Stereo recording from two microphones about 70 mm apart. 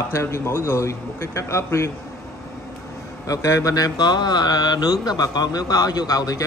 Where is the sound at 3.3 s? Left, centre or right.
Left.